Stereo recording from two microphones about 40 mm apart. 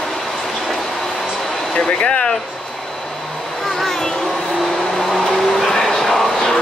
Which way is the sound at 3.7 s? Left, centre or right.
Centre.